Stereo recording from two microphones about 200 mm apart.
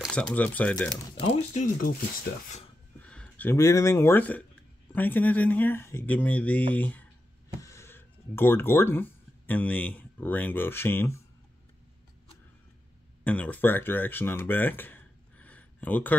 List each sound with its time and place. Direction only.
0.0 s speech: 5° left (ahead or behind)
1.5 s speech: 40° left (ahead or behind)
3.0 s speech: 5° left (ahead or behind)
13.2 s speech: 5° left (ahead or behind)